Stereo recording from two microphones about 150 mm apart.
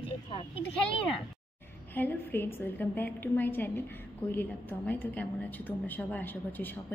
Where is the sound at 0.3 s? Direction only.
35° left (ahead or behind).